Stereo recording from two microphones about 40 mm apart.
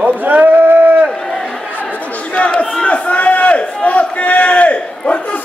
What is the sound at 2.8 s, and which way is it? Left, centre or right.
Crowd, left.